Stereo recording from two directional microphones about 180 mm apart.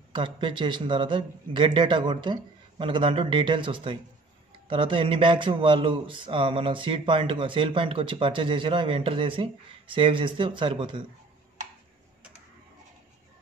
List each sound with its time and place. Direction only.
0.1 s speech: 30° right (ahead or behind)